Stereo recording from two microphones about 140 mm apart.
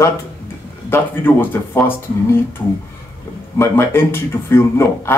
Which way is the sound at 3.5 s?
15° left (ahead or behind).